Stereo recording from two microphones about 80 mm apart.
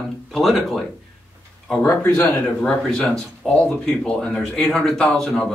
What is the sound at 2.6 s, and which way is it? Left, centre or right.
Speech, centre.